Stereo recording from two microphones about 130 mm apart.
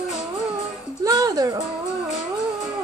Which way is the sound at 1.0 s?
30° right (ahead or behind).